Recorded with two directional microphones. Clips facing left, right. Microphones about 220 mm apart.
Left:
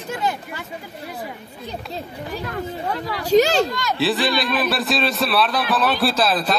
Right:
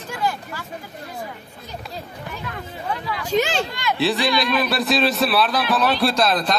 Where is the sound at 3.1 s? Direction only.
40° left (ahead or behind).